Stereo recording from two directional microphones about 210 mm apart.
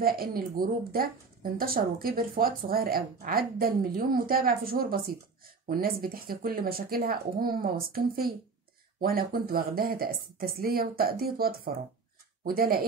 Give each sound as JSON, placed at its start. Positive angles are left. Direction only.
{"t": 0.0, "sound": "a woman's voice", "side_deg": -45}